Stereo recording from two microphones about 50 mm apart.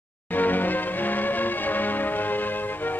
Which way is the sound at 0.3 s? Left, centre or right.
Left.